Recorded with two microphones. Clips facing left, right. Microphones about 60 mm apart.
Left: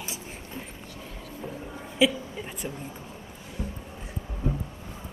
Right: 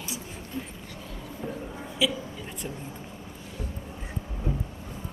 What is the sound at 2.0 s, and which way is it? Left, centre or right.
Speech, left.